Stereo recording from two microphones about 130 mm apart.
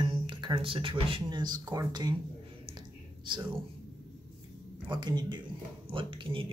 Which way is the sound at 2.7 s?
35° right (ahead or behind).